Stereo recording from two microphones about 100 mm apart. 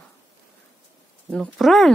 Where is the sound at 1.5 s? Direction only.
Centre (ahead or behind).